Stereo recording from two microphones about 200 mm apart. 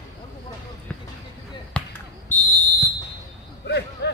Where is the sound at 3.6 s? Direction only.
55° left (ahead or behind).